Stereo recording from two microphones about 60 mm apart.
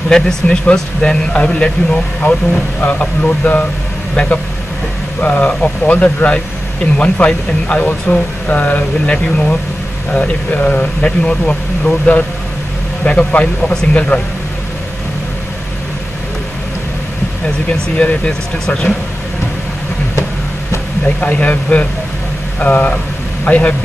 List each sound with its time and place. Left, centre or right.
0.1 s speech: centre
5.2 s speech: left
17.6 s speech: centre
21.2 s a man's voice: left